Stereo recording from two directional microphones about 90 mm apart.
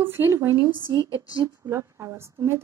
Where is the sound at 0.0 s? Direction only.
25° right (ahead or behind).